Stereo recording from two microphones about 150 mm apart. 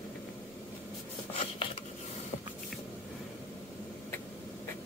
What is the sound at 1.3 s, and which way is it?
Dishes, 40° left (ahead or behind).